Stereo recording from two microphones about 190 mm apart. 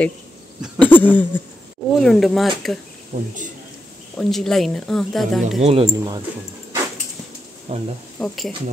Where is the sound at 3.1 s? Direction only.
40° right (ahead or behind).